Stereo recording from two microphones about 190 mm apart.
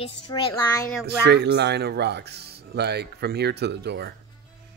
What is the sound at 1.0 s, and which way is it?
Speech, 60° right (ahead or behind).